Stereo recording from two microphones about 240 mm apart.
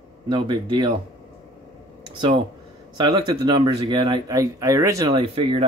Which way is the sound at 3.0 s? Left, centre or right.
Centre.